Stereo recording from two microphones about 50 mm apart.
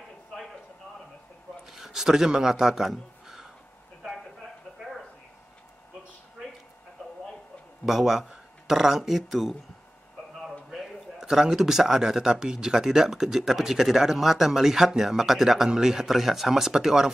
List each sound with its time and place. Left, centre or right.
0.3 s clip-clop: centre
1.7 s a man's voice: centre
4.0 s a sound: centre
7.0 s a sound: centre
7.8 s speech: centre
10.7 s a man's voice: centre